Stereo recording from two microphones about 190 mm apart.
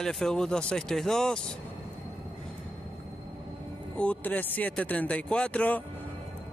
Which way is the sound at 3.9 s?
10° left (ahead or behind).